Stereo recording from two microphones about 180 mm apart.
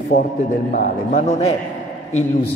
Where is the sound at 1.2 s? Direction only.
40° left (ahead or behind).